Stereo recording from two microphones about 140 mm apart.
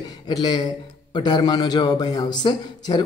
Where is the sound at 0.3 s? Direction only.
30° left (ahead or behind).